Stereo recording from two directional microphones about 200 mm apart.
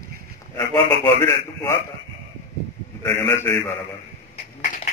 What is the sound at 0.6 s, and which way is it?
A man's voice, 15° left (ahead or behind).